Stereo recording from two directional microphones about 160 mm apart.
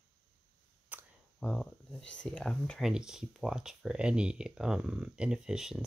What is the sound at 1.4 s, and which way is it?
Speech, 5° left (ahead or behind).